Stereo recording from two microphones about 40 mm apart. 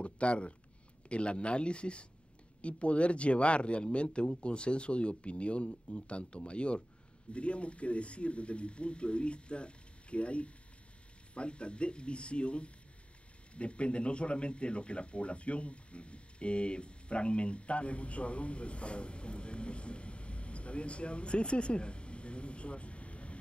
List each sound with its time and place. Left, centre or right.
0.0 s speech: left